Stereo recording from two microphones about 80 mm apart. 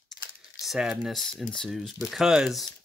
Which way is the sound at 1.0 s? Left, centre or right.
Centre.